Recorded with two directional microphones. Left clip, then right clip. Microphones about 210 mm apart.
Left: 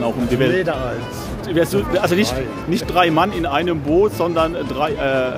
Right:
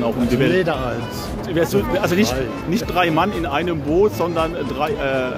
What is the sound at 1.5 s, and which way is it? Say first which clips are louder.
Speech: left 1 dB; 20° left (ahead or behind).